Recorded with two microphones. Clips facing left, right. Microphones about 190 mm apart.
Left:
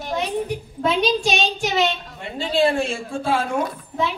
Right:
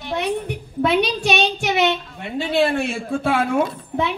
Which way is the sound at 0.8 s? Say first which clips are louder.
Right 1 dB; 65° right (ahead or behind).